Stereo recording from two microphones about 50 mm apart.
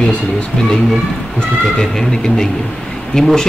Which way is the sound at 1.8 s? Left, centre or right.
Centre.